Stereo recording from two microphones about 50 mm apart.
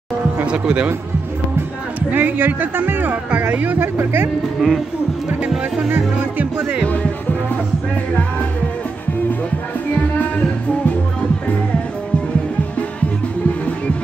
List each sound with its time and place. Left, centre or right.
0.5 s speech: right
2.0 s speech: right
3.1 s speech: right
3.7 s speech: right
4.6 s speech: centre
9.9 s music: left